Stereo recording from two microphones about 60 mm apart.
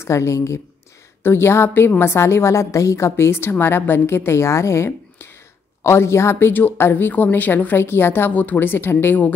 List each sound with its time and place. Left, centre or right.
0.0 s a woman's voice: left
1.2 s a woman's voice: left
6.5 s a woman's voice: left